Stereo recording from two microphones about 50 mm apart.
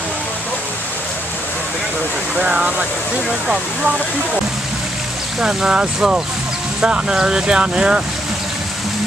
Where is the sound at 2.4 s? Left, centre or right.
Right.